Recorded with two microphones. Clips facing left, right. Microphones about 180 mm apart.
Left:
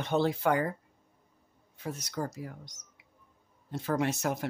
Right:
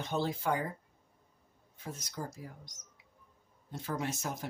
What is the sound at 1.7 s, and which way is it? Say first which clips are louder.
Speech: left 7 dB; 70° left (ahead or behind).